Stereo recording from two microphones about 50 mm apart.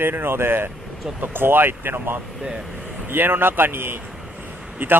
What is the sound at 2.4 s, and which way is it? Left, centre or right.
Speech, centre.